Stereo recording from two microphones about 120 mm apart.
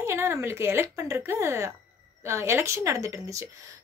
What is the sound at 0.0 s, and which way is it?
A woman's voice, 20° right (ahead or behind).